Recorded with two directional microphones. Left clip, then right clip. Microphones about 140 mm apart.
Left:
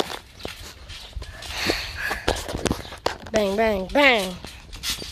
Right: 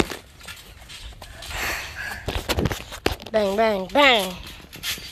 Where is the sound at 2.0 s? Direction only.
65° left (ahead or behind).